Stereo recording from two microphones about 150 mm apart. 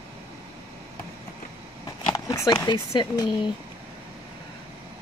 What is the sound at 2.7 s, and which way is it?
Speech, 30° left (ahead or behind).